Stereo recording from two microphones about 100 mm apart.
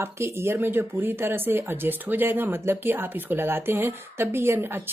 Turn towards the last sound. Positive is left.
turn(degrees=-25)  # may be behind; listen again after turning